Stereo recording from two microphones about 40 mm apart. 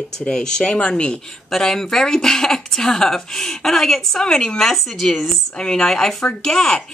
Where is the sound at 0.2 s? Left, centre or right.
Centre.